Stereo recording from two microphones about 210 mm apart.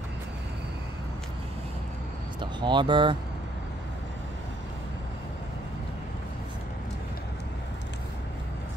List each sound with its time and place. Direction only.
2.4 s speech: 20° right (ahead or behind)